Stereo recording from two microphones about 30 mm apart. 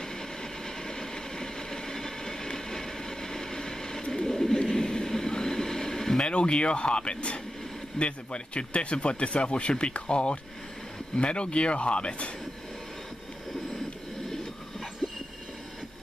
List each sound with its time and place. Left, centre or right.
0.4 s train: left
4.1 s a sound: centre
6.2 s speech: left